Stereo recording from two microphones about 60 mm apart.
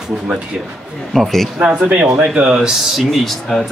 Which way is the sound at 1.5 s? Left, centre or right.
Centre.